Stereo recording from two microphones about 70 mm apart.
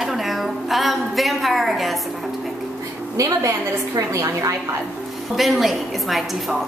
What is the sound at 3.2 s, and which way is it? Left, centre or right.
A woman's voice, right.